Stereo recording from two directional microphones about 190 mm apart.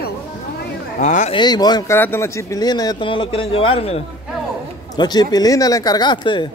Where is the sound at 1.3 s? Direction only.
20° left (ahead or behind).